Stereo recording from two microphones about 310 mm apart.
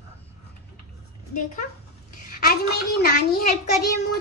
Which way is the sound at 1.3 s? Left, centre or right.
Left.